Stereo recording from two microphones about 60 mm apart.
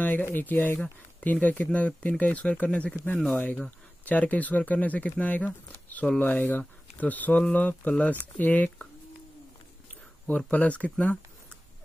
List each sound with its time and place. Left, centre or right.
0.2 s speech: left
3.2 s speech: centre
3.4 s speech: left
10.2 s speech: left